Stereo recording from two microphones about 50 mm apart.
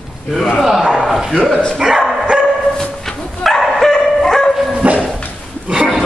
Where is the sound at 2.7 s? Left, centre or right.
Centre.